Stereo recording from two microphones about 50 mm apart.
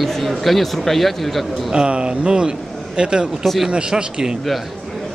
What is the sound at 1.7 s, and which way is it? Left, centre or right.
Speech, centre.